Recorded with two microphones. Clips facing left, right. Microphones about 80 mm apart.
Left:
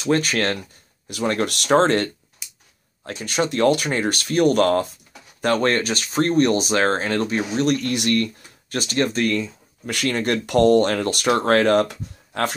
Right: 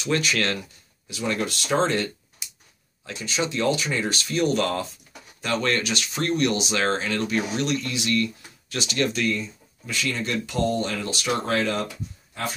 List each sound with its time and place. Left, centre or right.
0.0 s speech: left
3.1 s speech: left
7.6 s speech: left
9.3 s speech: left